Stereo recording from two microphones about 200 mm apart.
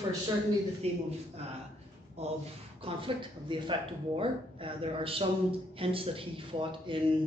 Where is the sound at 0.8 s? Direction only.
30° right (ahead or behind).